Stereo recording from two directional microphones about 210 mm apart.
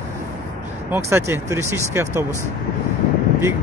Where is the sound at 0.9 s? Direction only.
10° right (ahead or behind).